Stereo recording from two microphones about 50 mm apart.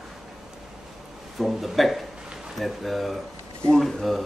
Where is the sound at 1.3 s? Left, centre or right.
Centre.